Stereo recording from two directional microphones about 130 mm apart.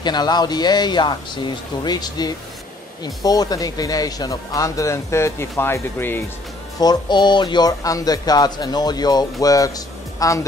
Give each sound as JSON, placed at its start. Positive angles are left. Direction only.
{"t": 0.0, "sound": "speech", "side_deg": 35}
{"t": 6.8, "sound": "speech", "side_deg": 35}